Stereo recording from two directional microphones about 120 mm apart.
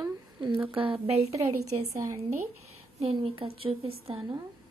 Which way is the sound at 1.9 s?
25° right (ahead or behind).